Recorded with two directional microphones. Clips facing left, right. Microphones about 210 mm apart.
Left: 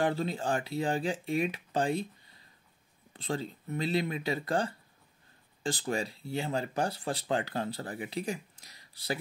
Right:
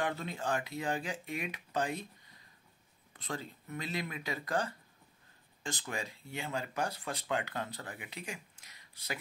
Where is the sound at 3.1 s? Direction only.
30° left (ahead or behind).